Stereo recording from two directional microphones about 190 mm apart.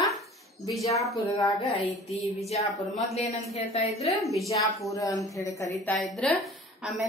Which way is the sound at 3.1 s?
35° left (ahead or behind).